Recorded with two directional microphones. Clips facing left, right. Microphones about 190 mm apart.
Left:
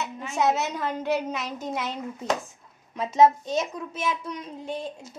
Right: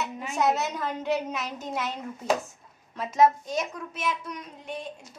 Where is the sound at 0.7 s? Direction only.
Centre (ahead or behind).